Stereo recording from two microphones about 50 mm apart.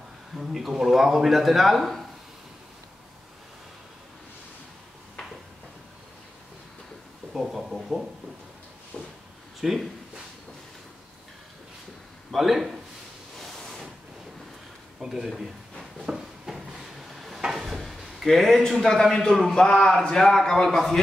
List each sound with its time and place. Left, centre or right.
0.4 s speech: centre
7.3 s speech: centre
8.9 s a sound: left
9.6 s speech: centre
12.3 s a man's voice: centre
13.4 s a sound: centre
15.0 s speech: centre
16.1 s drawer open or close: centre
17.4 s a man's voice: centre